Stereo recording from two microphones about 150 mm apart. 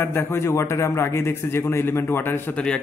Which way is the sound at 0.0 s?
15° left (ahead or behind).